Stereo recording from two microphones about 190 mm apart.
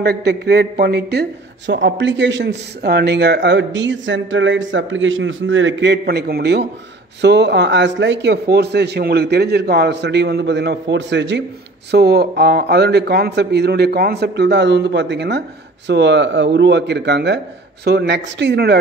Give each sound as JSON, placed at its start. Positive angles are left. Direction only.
{"t": 0.0, "sound": "a man's voice", "side_deg": -55}
{"t": 1.7, "sound": "a man's voice", "side_deg": -70}
{"t": 11.9, "sound": "a man's voice", "side_deg": -55}